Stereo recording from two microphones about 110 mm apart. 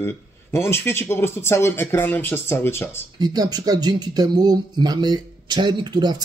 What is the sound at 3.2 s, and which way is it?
Speech, 35° right (ahead or behind).